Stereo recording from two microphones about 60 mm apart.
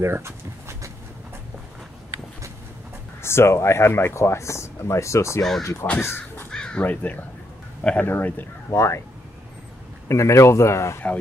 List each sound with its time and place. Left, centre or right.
0.0 s a sound: right
3.2 s speech: left
5.9 s speech: left
6.5 s crow: centre
6.8 s speech: left
8.7 s speech: left
10.0 s speech: left